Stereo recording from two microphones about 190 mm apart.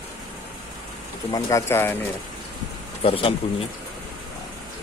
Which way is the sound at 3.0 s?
30° left (ahead or behind).